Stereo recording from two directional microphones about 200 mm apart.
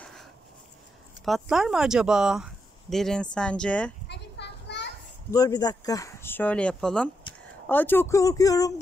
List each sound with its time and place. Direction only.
0.0 s writing: centre (ahead or behind)
1.2 s speech: centre (ahead or behind)
4.1 s children playing: 60° left (ahead or behind)
5.3 s speech: 20° left (ahead or behind)